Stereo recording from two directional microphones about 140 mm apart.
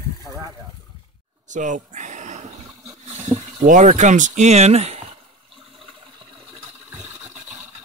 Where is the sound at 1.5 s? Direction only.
65° right (ahead or behind).